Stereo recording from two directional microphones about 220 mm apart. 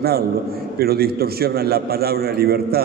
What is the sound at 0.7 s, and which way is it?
A man's voice, 45° right (ahead or behind).